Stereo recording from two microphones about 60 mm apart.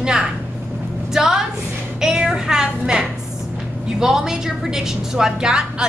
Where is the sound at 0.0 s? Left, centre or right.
Centre.